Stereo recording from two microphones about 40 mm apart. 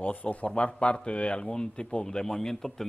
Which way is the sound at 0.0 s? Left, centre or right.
Left.